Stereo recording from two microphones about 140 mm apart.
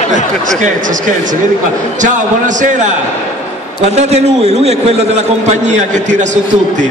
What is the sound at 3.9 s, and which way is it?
A man's voice, 50° right (ahead or behind).